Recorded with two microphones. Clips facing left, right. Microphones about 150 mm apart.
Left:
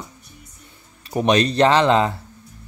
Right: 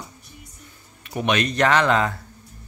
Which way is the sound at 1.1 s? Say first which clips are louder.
Left 5 dB; 35° left (ahead or behind).